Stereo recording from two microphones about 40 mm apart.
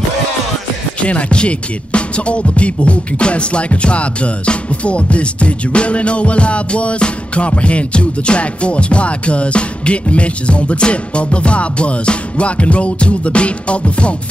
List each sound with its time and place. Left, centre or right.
1.0 s music: left